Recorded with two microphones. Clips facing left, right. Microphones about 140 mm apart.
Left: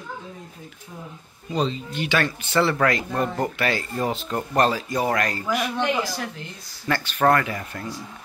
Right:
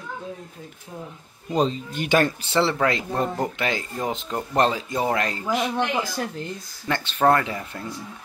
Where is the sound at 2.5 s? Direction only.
25° right (ahead or behind).